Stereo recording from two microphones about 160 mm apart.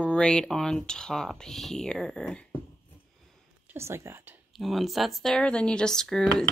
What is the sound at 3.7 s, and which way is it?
Speech, 15° right (ahead or behind).